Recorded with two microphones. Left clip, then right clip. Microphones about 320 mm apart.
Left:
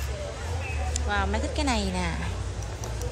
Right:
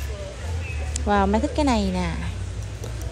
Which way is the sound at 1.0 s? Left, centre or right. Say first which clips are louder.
Right 8 dB; centre.